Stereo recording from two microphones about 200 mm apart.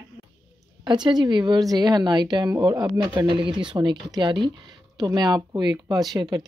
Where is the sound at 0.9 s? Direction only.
20° right (ahead or behind).